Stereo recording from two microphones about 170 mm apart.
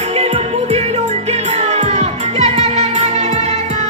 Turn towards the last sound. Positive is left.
turn(degrees=-40)  # may be behind; listen again after turning